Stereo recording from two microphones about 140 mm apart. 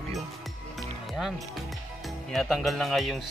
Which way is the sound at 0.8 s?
Centre (ahead or behind).